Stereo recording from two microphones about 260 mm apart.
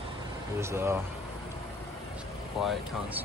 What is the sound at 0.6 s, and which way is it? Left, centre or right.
Speech, centre.